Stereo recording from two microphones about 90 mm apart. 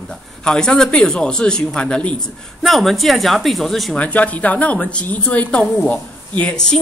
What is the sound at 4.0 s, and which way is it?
A woman's voice, 15° left (ahead or behind).